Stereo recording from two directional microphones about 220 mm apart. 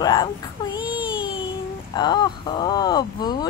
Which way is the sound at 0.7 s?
20° left (ahead or behind).